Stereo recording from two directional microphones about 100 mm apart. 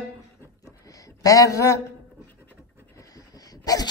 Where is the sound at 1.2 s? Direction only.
35° left (ahead or behind).